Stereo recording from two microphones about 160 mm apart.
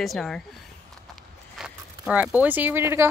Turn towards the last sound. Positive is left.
turn(degrees=-15)  # may be behind; listen again after turning